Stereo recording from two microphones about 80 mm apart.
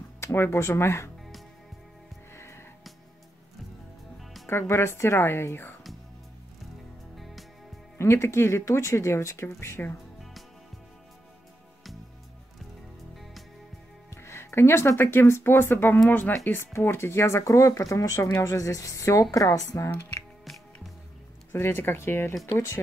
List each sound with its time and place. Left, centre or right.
0.2 s speech: left
2.3 s music: left
4.5 s speech: left
7.2 s music: centre
8.0 s speech: left
14.1 s speech: left
19.9 s speech: left
21.5 s speech: left